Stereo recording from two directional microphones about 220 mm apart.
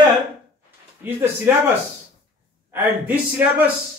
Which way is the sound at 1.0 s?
10° right (ahead or behind).